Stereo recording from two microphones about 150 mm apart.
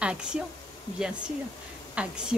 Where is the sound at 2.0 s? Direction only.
10° right (ahead or behind).